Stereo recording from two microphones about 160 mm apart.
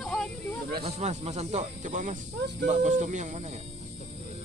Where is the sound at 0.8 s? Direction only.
40° right (ahead or behind).